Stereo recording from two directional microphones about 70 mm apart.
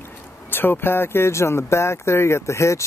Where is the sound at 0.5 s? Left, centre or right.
Left.